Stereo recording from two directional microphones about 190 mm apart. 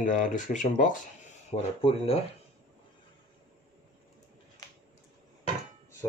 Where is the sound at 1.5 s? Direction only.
30° left (ahead or behind).